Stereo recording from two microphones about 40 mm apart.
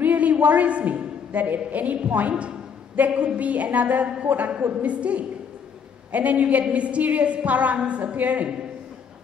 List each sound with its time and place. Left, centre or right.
0.0 s a woman's voice: right